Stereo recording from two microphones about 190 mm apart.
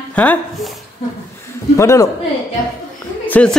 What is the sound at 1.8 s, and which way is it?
Speech, 15° left (ahead or behind).